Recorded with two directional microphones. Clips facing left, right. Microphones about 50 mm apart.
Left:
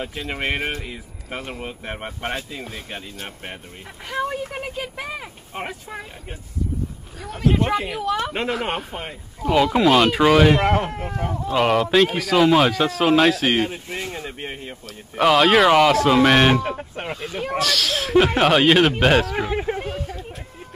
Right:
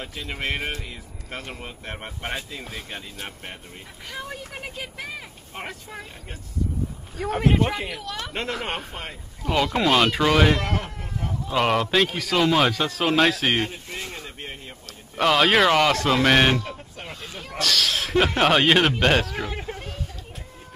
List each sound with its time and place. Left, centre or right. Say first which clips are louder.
0.3 s speech: left 3 dB; centre
7.5 s speech: left 3 dB; centre
8.0 s speech: left 8 dB; centre
10.6 s speech: left 9 dB; left
10.9 s speech: left 6 dB; left
11.4 s speech: left 3 dB; centre
13.7 s a sound: left 5 dB; centre
14.2 s speech: left 5 dB; left
15.1 s speech: left 3 dB; centre
16.6 s speech: left 8 dB; left
17.6 s speech: left 1 dB; centre
19.3 s a sound: left 7 dB; centre